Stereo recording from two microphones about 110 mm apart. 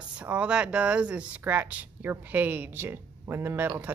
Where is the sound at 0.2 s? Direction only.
15° right (ahead or behind).